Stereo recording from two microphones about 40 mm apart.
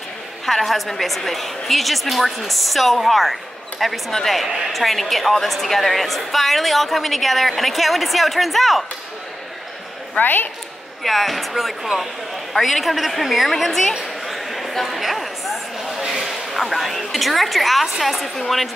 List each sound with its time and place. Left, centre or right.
0.5 s a woman's voice: centre
10.2 s a woman's voice: left
11.1 s a woman's voice: centre
14.2 s a sound: centre
16.3 s a woman's voice: centre